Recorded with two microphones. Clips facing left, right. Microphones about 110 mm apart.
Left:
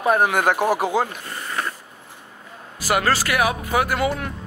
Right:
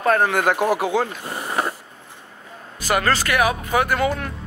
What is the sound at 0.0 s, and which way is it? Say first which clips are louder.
Speech: even; 15° left (ahead or behind).